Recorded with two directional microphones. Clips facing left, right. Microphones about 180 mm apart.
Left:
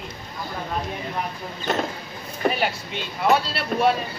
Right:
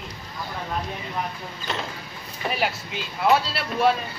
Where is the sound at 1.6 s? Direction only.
50° left (ahead or behind).